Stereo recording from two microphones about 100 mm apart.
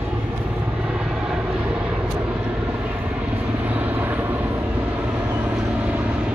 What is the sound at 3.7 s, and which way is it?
Vehicle, 15° right (ahead or behind).